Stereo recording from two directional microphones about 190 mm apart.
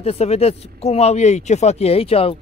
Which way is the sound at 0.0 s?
35° left (ahead or behind).